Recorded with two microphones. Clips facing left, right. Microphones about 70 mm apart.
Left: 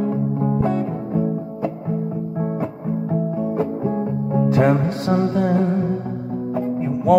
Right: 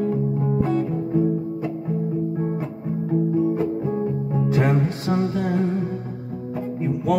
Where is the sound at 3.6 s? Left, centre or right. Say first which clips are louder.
Left 1 dB; left.